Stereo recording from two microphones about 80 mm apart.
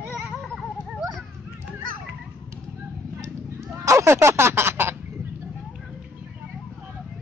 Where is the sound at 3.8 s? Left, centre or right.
Right.